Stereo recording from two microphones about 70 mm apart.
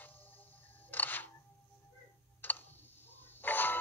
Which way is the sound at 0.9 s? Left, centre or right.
Left.